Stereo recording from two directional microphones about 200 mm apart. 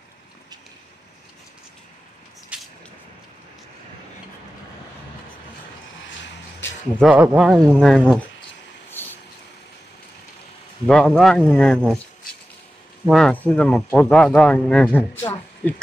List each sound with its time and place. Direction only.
7.0 s speech: 5° right (ahead or behind)
7.8 s speech: 5° left (ahead or behind)
8.9 s vehicle: 10° left (ahead or behind)
10.9 s speech: centre (ahead or behind)
13.0 s speech: centre (ahead or behind)
15.3 s a sound: 20° left (ahead or behind)